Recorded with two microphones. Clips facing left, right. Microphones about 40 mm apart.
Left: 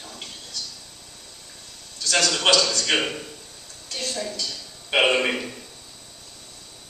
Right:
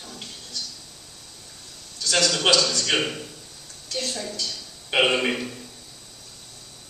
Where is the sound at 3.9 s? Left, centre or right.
Left.